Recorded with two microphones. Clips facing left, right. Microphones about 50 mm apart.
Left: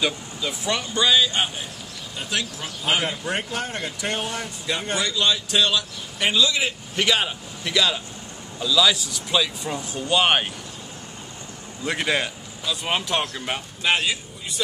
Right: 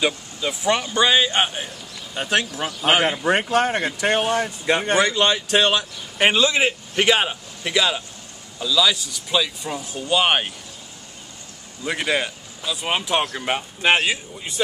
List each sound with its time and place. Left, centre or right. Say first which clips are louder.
0.0 s speech: right 3 dB; right
2.1 s speech: right 6 dB; right; by 8.0 s centre
8.5 s speech: even; centre
11.8 s speech: right 1 dB; centre
13.2 s speech: right 4 dB; right
13.8 s speech: right 4 dB; right